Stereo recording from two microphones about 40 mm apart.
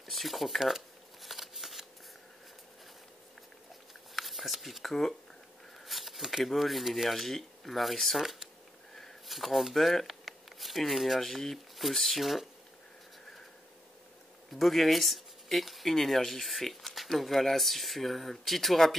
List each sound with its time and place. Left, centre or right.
0.0 s shuffling cards: centre
4.1 s a sound: centre
5.9 s speech: centre
14.5 s speech: centre